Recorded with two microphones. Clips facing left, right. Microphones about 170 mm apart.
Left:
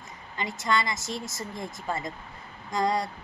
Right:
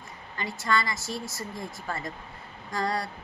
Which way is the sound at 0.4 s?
20° left (ahead or behind).